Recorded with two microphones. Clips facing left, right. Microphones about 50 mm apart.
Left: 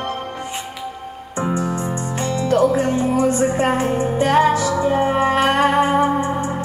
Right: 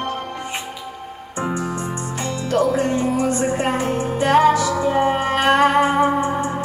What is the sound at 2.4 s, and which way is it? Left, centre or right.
Music, left.